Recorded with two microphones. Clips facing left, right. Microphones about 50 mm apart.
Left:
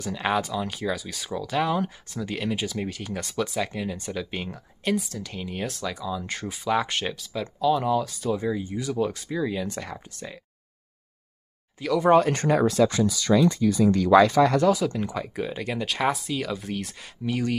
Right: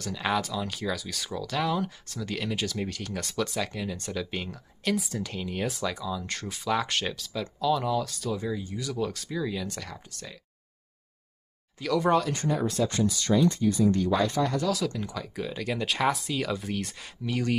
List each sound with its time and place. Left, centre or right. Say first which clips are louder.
0.0 s speech: left 3 dB; centre
6.1 s speech: left 3 dB; centre
11.8 s speech: left 2 dB; centre
12.3 s speech: left 6 dB; left
13.8 s speech: left 11 dB; left
14.7 s speech: left 6 dB; left; by 17.6 s centre